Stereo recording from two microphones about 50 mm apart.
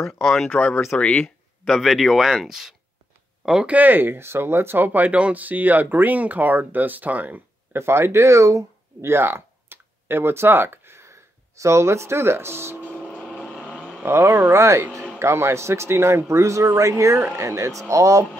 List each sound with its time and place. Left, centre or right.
0.2 s speech: centre
0.9 s speech: left
1.7 s speech: centre
3.6 s speech: right
7.7 s speech: right
11.6 s speech: right
13.7 s vehicle: centre
14.0 s speech: right
15.1 s a man's voice: right